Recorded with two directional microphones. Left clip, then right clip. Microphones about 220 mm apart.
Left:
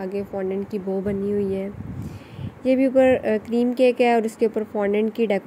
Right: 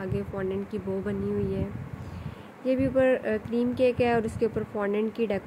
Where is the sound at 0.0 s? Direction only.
10° left (ahead or behind).